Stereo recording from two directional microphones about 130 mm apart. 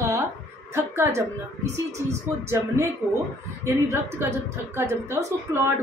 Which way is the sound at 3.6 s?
20° right (ahead or behind).